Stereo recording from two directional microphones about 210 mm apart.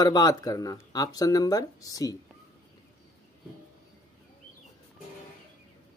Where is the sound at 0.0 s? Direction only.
20° left (ahead or behind).